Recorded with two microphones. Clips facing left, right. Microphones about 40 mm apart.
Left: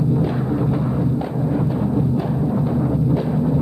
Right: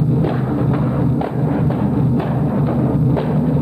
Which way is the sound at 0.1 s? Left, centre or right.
Right.